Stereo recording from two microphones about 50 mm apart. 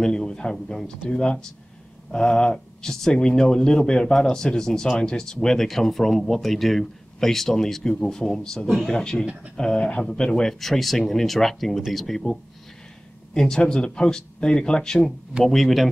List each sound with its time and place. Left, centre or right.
0.0 s speech: centre
9.2 s speech: right
9.6 s speech: centre